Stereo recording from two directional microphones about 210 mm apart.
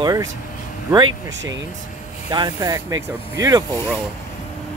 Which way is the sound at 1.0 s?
60° right (ahead or behind).